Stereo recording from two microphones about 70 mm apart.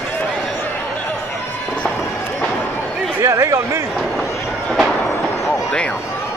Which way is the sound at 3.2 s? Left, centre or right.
Right.